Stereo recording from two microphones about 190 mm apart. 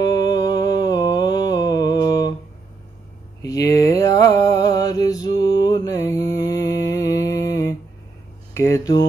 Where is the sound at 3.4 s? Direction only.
15° left (ahead or behind).